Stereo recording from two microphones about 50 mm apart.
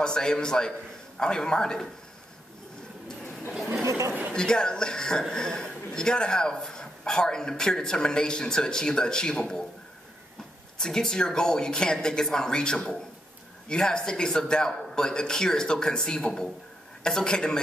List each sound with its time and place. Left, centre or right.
0.0 s speech: centre
4.3 s speech: centre
10.8 s speech: centre